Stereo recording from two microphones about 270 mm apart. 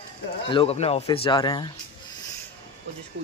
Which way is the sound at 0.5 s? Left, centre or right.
Left.